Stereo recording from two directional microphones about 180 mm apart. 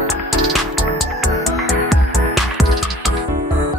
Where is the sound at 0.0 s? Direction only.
Centre (ahead or behind).